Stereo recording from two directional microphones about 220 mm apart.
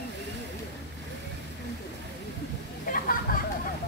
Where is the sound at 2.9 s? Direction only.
40° left (ahead or behind).